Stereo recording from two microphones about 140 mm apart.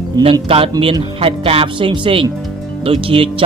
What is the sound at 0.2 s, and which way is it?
Speech, 40° right (ahead or behind).